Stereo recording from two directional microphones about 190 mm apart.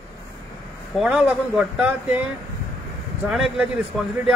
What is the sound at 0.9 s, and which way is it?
Speech, 5° right (ahead or behind).